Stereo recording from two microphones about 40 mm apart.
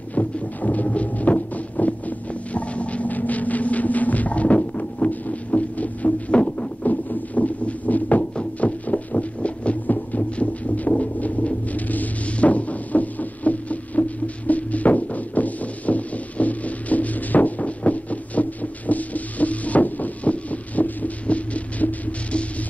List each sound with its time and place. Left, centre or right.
0.1 s music: left
6.9 s a sound: left
8.2 s music: left